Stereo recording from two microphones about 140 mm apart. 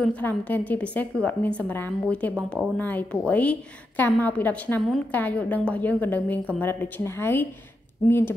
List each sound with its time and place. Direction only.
0.0 s a woman's voice: 10° left (ahead or behind)